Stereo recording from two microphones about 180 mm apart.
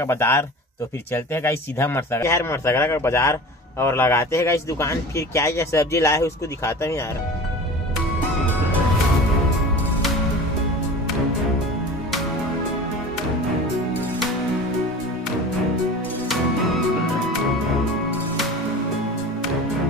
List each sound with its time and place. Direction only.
0.0 s speech: 15° left (ahead or behind)